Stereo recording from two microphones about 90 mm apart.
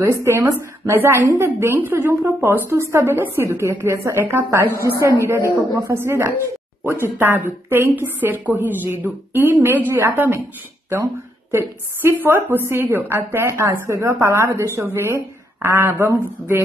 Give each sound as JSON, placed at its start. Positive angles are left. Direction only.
{"t": 0.0, "sound": "a woman's voice", "side_deg": -30}
{"t": 11.5, "sound": "a woman's voice", "side_deg": -25}